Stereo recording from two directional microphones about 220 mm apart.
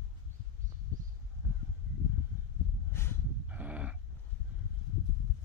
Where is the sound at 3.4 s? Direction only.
5° right (ahead or behind).